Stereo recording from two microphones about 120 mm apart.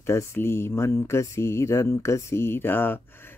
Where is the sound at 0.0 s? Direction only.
20° left (ahead or behind).